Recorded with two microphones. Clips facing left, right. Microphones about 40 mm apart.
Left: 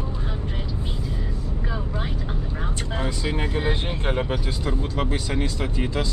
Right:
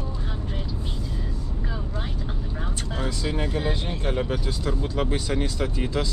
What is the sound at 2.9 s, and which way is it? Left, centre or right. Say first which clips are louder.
Speech: left 1 dB; centre.